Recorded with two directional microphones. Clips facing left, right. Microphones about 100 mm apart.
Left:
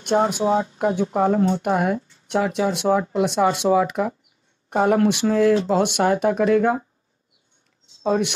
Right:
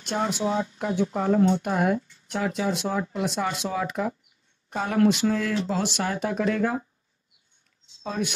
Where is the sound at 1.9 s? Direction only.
30° left (ahead or behind).